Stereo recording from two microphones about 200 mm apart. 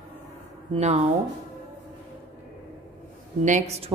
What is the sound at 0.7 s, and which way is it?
Speech, 30° right (ahead or behind).